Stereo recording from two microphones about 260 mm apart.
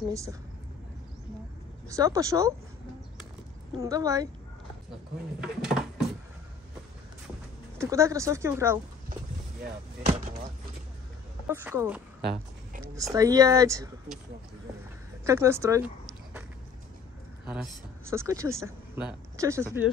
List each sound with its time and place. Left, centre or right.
0.1 s speech: centre
1.9 s speech: centre
3.7 s speech: centre
5.4 s speech: centre
7.8 s speech: centre
10.0 s speech: right
11.4 s a woman's voice: centre
15.2 s speech: centre
18.1 s speech: centre